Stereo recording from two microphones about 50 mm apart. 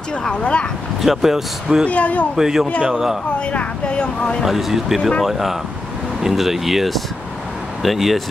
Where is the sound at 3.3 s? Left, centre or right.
Left.